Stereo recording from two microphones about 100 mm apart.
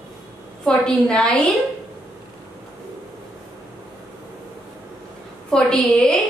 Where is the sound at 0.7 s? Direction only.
10° left (ahead or behind).